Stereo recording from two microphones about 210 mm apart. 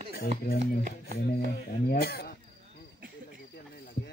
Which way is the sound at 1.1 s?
45° left (ahead or behind).